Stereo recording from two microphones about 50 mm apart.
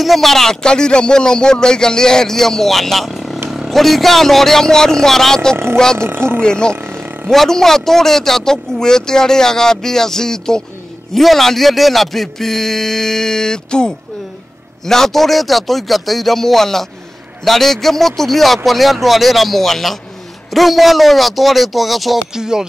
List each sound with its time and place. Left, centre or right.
0.0 s speech: centre
5.9 s speech: right
6.4 s speech: centre
6.8 s vehicle: right
7.2 s speech: centre
22.3 s music: centre